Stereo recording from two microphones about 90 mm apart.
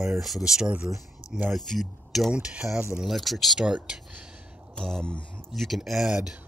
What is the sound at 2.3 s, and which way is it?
Speech, 10° right (ahead or behind).